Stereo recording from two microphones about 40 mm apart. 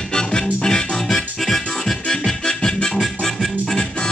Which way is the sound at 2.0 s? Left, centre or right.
Centre.